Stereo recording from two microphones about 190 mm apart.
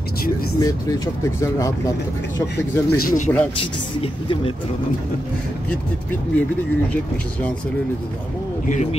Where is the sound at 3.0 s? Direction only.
45° left (ahead or behind).